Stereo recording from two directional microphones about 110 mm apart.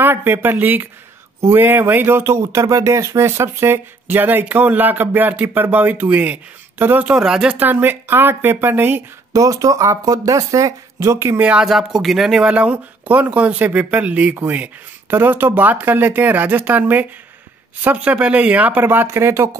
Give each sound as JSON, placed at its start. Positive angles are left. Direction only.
{"t": 0.0, "sound": "speech", "side_deg": -20}
{"t": 9.3, "sound": "speech", "side_deg": -30}
{"t": 11.4, "sound": "speech", "side_deg": -5}